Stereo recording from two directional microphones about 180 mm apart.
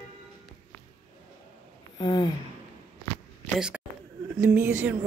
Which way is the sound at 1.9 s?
25° left (ahead or behind).